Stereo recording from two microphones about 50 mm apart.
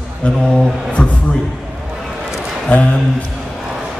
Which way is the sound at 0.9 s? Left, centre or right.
Left.